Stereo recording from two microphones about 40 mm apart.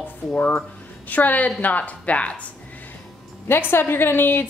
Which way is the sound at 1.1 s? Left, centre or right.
Left.